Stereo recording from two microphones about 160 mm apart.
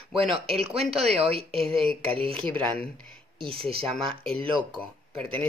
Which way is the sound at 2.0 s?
35° right (ahead or behind).